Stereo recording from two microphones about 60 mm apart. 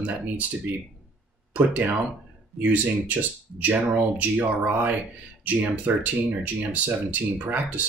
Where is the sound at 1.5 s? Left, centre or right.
Right.